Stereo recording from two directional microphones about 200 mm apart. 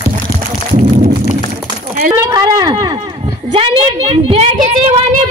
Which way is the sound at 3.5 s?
30° right (ahead or behind).